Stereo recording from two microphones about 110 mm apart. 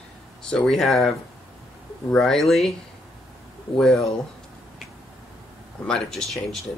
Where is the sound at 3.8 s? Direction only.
Centre (ahead or behind).